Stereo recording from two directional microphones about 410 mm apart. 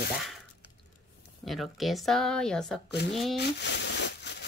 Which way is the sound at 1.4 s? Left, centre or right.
Centre.